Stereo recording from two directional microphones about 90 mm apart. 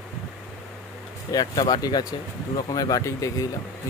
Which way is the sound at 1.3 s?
45° left (ahead or behind).